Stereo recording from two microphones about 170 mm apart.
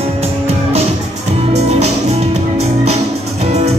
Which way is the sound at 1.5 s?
40° right (ahead or behind).